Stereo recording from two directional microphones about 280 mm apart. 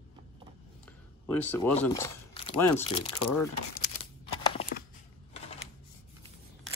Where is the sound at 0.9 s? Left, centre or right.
Centre.